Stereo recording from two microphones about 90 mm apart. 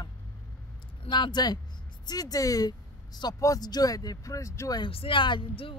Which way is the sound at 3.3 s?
40° left (ahead or behind).